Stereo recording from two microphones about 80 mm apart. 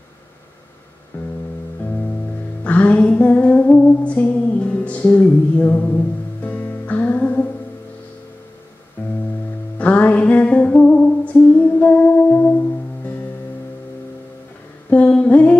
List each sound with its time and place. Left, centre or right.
1.1 s music: left
2.6 s music: centre
9.0 s music: left
14.9 s a sound: centre